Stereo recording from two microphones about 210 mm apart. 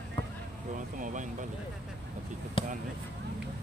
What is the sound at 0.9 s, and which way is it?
Speech, 35° right (ahead or behind).